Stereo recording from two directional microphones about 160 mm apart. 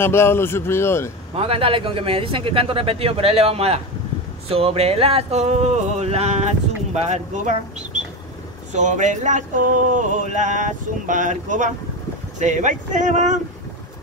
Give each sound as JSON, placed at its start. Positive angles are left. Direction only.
{"t": 0.0, "sound": "a man's voice", "side_deg": 15}
{"t": 1.3, "sound": "speech", "side_deg": -35}
{"t": 7.1, "sound": "a sound", "side_deg": -50}